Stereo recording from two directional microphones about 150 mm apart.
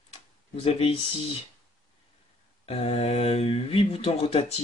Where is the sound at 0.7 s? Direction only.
40° left (ahead or behind).